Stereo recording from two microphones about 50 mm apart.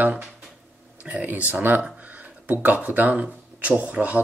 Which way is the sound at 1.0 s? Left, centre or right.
Centre.